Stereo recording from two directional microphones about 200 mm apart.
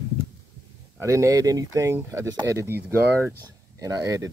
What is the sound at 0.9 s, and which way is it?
Speech, 15° right (ahead or behind).